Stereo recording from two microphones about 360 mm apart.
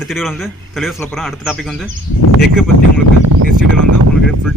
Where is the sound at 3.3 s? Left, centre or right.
Right.